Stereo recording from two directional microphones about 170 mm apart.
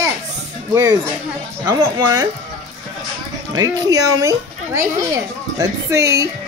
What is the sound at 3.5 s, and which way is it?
Speech, 20° right (ahead or behind).